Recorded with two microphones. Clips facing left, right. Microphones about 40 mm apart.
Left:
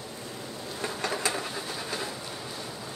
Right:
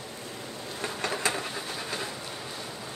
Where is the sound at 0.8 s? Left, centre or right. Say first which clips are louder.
Even; right.